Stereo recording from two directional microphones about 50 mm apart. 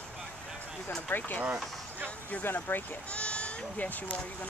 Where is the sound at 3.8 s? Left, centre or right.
Left.